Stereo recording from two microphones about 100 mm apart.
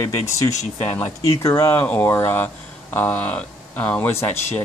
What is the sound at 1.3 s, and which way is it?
Speech, 30° left (ahead or behind).